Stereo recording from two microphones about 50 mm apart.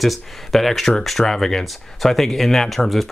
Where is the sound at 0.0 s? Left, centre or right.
Centre.